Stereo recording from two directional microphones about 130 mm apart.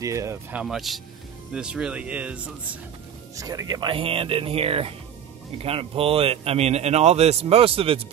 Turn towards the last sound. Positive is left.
turn(degrees=-45)  # may be behind; listen again after turning